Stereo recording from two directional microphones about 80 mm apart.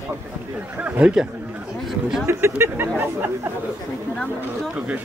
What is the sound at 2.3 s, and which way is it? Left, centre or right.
Speech, right.